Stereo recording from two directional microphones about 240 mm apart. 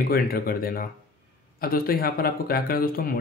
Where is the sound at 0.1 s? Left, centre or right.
Left.